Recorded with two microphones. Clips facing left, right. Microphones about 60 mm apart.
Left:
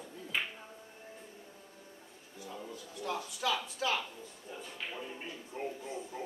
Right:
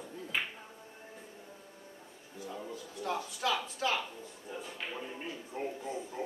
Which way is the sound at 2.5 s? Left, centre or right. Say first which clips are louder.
Right 2 dB; centre.